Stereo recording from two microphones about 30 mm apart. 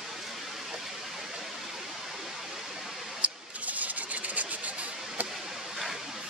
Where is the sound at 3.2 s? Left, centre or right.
Right.